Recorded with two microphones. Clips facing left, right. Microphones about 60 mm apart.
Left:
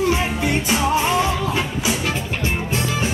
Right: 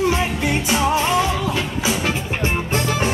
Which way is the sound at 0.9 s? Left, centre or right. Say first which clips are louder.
Even; centre.